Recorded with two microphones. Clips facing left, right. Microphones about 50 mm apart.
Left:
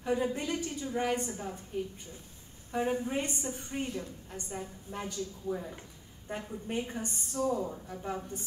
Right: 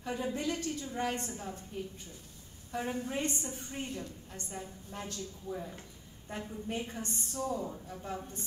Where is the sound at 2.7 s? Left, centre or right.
Centre.